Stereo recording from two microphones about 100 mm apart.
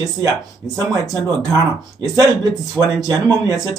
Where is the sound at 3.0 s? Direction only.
40° right (ahead or behind).